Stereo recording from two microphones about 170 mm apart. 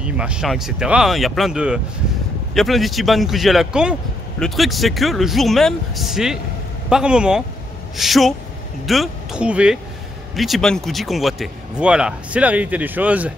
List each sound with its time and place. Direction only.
0.0 s speech: 5° right (ahead or behind)